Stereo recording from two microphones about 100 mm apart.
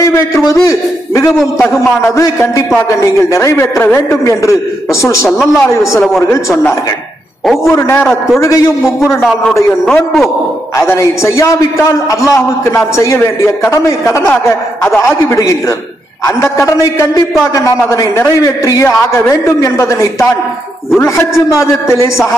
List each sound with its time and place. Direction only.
0.0 s a man's voice: 30° left (ahead or behind)
7.7 s a man's voice: 25° left (ahead or behind)
10.8 s a man's voice: 30° left (ahead or behind)